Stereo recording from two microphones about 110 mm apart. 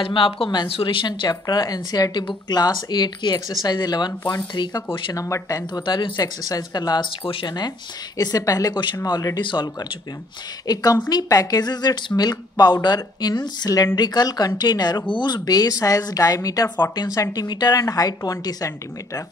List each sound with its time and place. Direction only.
0.0 s a woman's voice: 55° left (ahead or behind)
5.1 s speech: 30° left (ahead or behind)
5.8 s a woman's voice: 45° left (ahead or behind)